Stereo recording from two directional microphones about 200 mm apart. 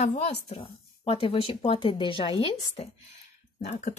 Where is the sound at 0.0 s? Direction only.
35° left (ahead or behind).